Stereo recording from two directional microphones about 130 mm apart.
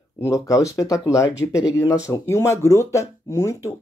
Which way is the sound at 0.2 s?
25° left (ahead or behind).